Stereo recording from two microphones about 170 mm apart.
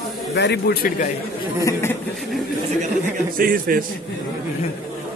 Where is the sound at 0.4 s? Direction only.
80° left; by 1.1 s 55° left (ahead or behind).